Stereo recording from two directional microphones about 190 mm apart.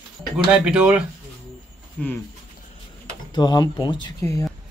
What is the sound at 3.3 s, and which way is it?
Speech, 20° left (ahead or behind).